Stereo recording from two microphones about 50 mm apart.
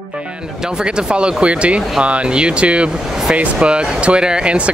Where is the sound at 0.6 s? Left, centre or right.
Centre.